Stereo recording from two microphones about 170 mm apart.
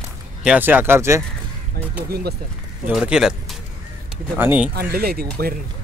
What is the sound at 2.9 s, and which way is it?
Speech, 5° right (ahead or behind).